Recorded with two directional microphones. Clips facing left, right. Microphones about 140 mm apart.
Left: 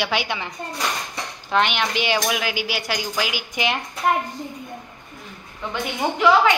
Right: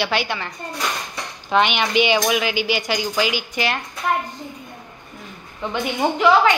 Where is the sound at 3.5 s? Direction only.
15° left (ahead or behind).